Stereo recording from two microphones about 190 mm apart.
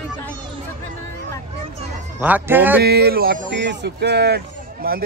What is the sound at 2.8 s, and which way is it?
Speech, 55° right (ahead or behind).